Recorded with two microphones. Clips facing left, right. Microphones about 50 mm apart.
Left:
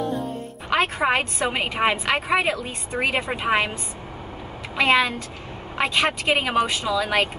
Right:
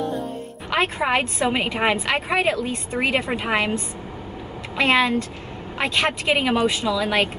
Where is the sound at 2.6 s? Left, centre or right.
Centre.